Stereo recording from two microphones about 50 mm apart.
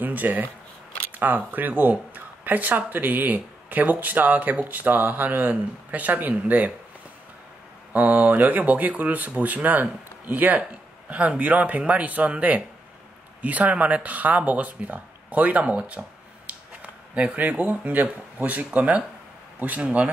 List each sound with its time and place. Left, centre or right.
0.0 s speech: right
7.9 s speech: right
16.4 s a sound: right
18.0 s speech: right